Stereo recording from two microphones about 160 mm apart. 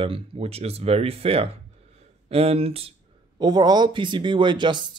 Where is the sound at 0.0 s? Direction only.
35° right (ahead or behind).